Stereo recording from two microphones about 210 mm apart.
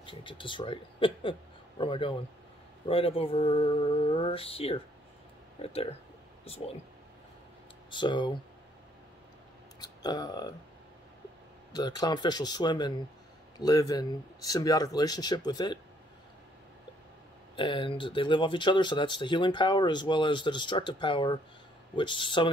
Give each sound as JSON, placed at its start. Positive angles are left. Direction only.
{"t": 0.0, "sound": "speech", "side_deg": 25}
{"t": 7.9, "sound": "speech", "side_deg": 20}
{"t": 9.8, "sound": "speech", "side_deg": 20}
{"t": 11.7, "sound": "speech", "side_deg": 20}
{"t": 17.6, "sound": "speech", "side_deg": 25}